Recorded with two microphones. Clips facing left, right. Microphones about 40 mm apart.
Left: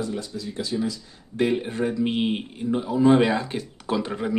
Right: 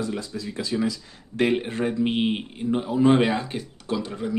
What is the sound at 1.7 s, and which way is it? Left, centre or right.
Speech, right.